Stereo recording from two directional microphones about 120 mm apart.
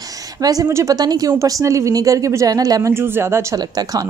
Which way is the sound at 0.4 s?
30° right (ahead or behind).